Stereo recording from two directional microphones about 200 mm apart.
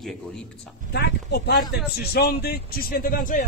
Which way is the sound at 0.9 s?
55° left (ahead or behind).